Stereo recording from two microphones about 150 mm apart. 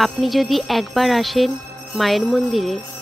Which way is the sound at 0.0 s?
Centre (ahead or behind).